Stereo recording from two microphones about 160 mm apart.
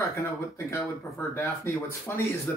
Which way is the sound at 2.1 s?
15° left (ahead or behind).